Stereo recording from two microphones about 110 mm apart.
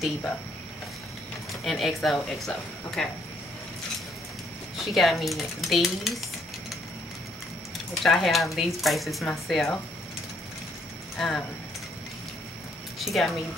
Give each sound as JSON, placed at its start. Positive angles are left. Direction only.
{"t": 1.5, "sound": "speech", "side_deg": 0}
{"t": 4.8, "sound": "speech", "side_deg": 0}
{"t": 8.0, "sound": "speech", "side_deg": 0}
{"t": 11.1, "sound": "speech", "side_deg": 5}
{"t": 13.0, "sound": "speech", "side_deg": 0}